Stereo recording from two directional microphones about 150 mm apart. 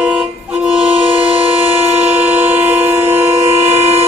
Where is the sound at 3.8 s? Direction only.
45° right (ahead or behind).